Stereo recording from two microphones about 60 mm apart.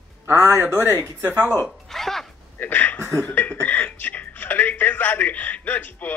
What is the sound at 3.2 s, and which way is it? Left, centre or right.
Speech, left.